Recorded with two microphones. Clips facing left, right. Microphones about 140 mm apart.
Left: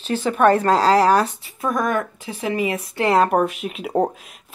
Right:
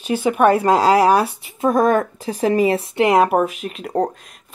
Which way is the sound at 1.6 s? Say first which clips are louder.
Right 6 dB; 30° right (ahead or behind).